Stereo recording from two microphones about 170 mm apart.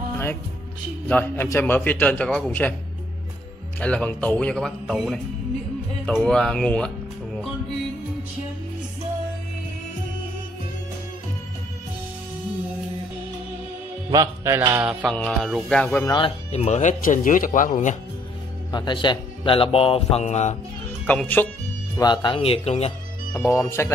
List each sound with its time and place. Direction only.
1.0 s a man's voice: 10° left (ahead or behind)
3.8 s speech: 10° left (ahead or behind)
14.1 s music: 15° right (ahead or behind)
14.9 s speech: centre (ahead or behind)
15.1 s a man's voice: 10° left (ahead or behind)
16.1 s speech: 30° left (ahead or behind)
16.5 s speech: 40° left (ahead or behind)
18.7 s speech: 25° left (ahead or behind); by 20.5 s 40° left (ahead or behind)
21.1 s a man's voice: 10° left (ahead or behind)
21.9 s speech: 25° left (ahead or behind)
23.3 s a man's voice: 15° left (ahead or behind)